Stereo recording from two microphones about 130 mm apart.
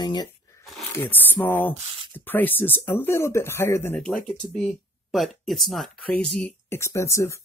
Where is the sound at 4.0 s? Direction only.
5° left (ahead or behind).